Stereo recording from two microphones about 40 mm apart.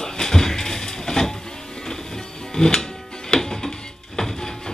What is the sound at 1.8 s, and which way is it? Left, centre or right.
Music, centre.